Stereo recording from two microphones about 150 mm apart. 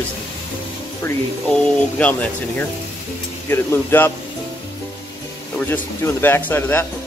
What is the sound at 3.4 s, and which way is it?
Speech, 15° left (ahead or behind).